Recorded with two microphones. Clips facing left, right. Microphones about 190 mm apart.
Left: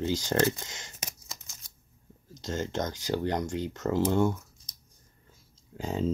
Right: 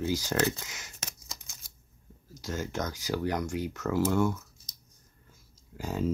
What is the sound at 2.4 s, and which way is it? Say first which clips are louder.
Speech: left 2 dB; 25° left (ahead or behind).